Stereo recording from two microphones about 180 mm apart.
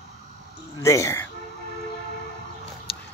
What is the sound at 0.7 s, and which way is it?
Speech, 15° left (ahead or behind).